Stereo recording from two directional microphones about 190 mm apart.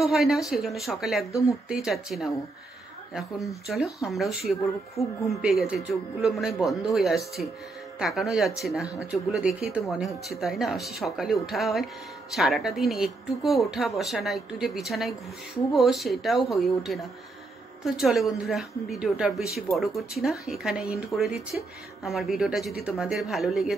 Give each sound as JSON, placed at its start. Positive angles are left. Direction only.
{"t": 0.0, "sound": "speech", "side_deg": 0}
{"t": 3.6, "sound": "speech", "side_deg": 0}
{"t": 4.9, "sound": "speech", "side_deg": 15}
{"t": 5.4, "sound": "speech", "side_deg": 0}